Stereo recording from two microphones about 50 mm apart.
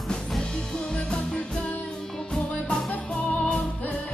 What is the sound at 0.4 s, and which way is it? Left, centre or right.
Music, centre.